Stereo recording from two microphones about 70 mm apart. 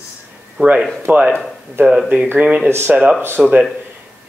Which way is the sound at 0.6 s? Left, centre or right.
Right.